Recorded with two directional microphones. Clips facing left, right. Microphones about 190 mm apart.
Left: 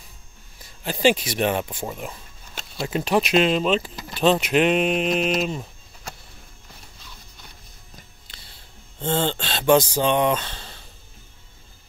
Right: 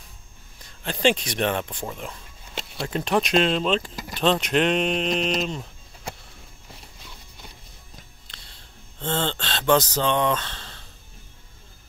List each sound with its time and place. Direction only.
0.6 s speech: 5° left (ahead or behind)
8.3 s a sound: 5° left (ahead or behind)
9.0 s speech: 10° left (ahead or behind)